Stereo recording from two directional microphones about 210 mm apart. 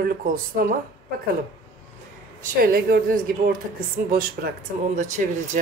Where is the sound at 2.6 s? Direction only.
45° right (ahead or behind).